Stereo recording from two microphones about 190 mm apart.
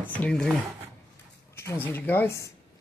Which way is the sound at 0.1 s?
5° left (ahead or behind).